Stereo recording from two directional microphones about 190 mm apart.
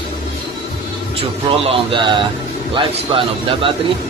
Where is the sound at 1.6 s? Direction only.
25° right (ahead or behind).